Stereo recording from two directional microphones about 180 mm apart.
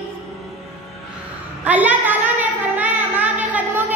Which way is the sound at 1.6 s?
10° right (ahead or behind).